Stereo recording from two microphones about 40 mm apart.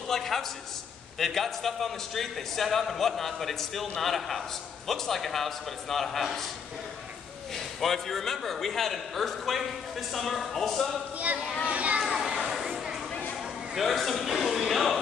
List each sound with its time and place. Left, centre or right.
0.1 s a sound: centre
1.1 s a man's voice: centre
7.5 s a man's voice: centre
11.6 s a child's voice: right
12.4 s a sound: centre
13.7 s a man's voice: centre